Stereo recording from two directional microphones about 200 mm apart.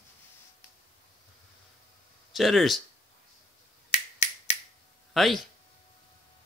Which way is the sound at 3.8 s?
35° left (ahead or behind).